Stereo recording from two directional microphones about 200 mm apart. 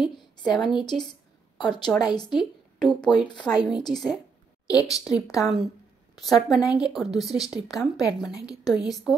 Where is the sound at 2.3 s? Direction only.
Centre (ahead or behind).